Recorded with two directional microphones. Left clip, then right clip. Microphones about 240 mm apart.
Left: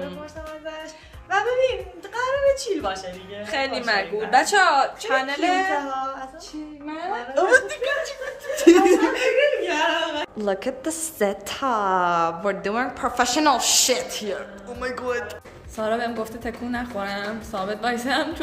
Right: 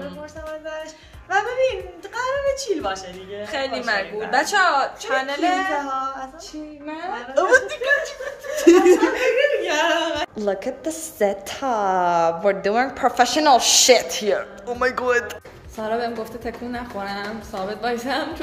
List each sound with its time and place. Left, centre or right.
1.3 s a woman's voice: centre
3.4 s a woman's voice: centre
5.8 s a woman's voice: centre
7.3 s a woman's voice: centre
9.7 s a sound: right
10.3 s a woman's voice: centre
15.8 s a woman's voice: centre